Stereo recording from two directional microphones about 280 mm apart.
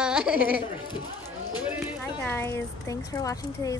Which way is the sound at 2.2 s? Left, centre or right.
Centre.